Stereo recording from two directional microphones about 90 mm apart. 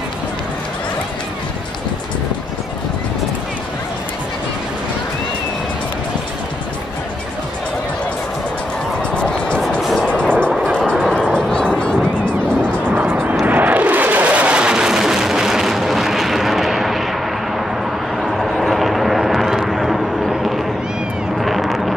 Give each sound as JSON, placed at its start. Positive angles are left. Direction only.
{"t": 9.1, "sound": "music", "side_deg": 10}
{"t": 9.8, "sound": "music", "side_deg": 0}
{"t": 10.0, "sound": "music", "side_deg": 10}
{"t": 12.9, "sound": "vehicle", "side_deg": -20}
{"t": 13.5, "sound": "a sound", "side_deg": -20}
{"t": 18.2, "sound": "vehicle", "side_deg": 0}
{"t": 21.4, "sound": "a sound", "side_deg": 0}